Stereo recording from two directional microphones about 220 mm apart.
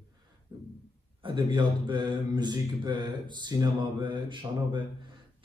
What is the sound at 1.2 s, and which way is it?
A man's voice, 20° right (ahead or behind).